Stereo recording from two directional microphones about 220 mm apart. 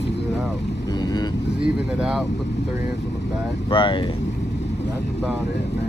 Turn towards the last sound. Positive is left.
turn(degrees=25)  # may be behind; listen again after turning